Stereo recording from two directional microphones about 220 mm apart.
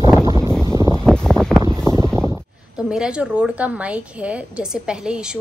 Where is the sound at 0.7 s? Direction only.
20° left (ahead or behind).